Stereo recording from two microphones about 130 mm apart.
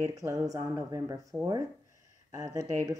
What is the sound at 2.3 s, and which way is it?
Speech, 25° right (ahead or behind).